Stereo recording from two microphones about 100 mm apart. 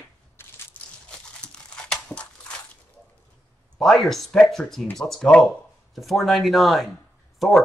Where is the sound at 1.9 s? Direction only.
10° left (ahead or behind).